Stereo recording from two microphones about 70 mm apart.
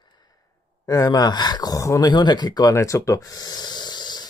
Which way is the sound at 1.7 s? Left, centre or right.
Left.